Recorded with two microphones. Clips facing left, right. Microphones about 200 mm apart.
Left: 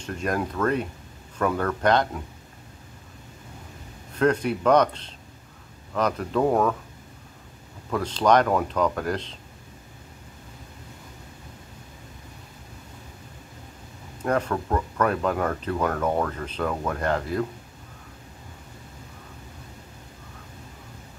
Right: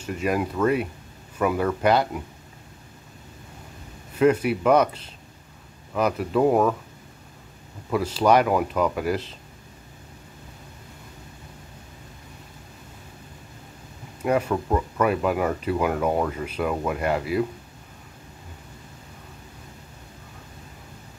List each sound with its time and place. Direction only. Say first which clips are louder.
0.0 s speech: right 2 dB; 10° right (ahead or behind)
4.2 s speech: right 3 dB; 5° right (ahead or behind)
7.9 s speech: right 1 dB; 10° right (ahead or behind)
14.2 s speech: right 2 dB; 10° right (ahead or behind)